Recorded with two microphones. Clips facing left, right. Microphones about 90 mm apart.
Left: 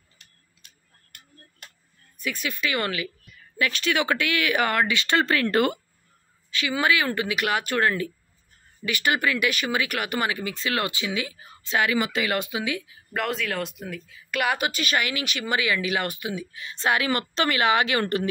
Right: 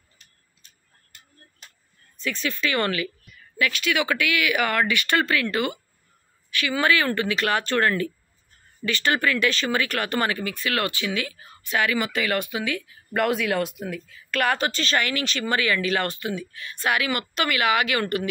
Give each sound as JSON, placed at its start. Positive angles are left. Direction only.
{"t": 2.1, "sound": "speech", "side_deg": 10}
{"t": 3.5, "sound": "speech", "side_deg": 30}
{"t": 5.2, "sound": "speech", "side_deg": 35}
{"t": 6.5, "sound": "speech", "side_deg": 20}
{"t": 10.4, "sound": "speech", "side_deg": 20}
{"t": 13.1, "sound": "speech", "side_deg": -5}